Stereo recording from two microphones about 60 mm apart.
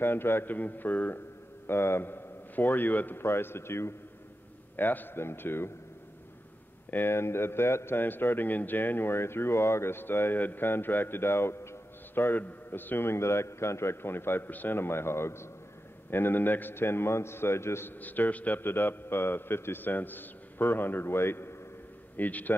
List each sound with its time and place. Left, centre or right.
0.0 s a man's voice: left
1.7 s a man's voice: left
3.2 s speech: left
4.7 s a man's voice: left
6.9 s a man's voice: left
18.0 s a man's voice: left
22.1 s a man's voice: left